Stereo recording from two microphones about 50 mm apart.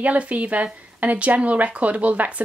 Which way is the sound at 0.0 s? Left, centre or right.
Right.